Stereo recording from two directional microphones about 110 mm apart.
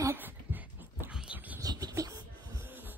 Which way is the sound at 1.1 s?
10° right (ahead or behind).